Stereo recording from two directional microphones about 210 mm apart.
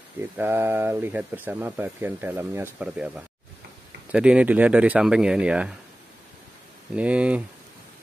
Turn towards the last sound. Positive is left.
turn(degrees=-5)  # may be behind; listen again after turning